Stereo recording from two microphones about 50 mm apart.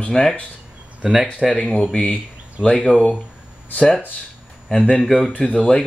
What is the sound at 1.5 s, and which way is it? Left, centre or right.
Speech, centre.